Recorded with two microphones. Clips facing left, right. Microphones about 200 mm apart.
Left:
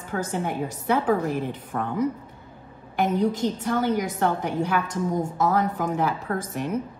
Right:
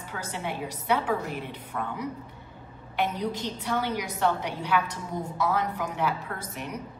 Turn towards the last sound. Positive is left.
turn(degrees=50)  # may be behind; listen again after turning